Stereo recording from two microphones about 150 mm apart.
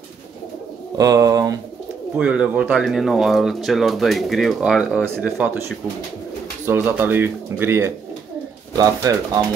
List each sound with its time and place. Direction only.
0.9 s speech: 20° right (ahead or behind)
2.1 s speech: 5° right (ahead or behind); by 9.4 s 25° right (ahead or behind)